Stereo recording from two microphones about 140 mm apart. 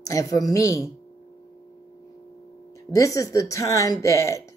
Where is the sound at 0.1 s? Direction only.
25° left (ahead or behind).